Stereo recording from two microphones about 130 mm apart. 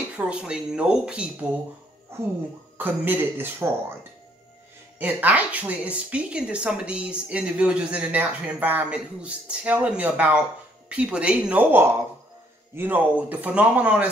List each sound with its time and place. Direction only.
0.2 s speech: 10° right (ahead or behind)
2.8 s speech: 15° right (ahead or behind)
4.9 s speech: 15° right (ahead or behind)